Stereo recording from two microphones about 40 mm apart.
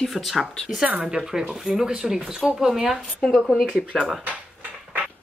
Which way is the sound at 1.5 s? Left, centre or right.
Centre.